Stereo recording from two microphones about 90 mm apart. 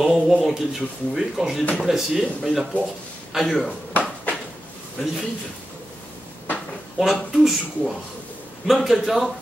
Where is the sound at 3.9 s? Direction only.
15° left (ahead or behind).